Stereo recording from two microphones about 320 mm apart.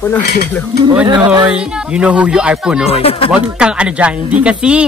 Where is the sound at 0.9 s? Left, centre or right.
Centre.